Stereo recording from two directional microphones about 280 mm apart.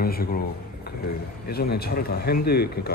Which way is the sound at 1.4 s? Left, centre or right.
Left.